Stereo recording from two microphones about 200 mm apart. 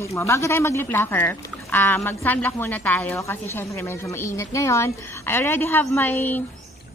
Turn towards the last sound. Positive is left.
turn(degrees=10)  # may be behind; listen again after turning